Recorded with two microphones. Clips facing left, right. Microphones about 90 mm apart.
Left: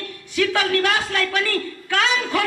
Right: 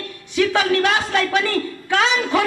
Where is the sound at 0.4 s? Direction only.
20° right (ahead or behind).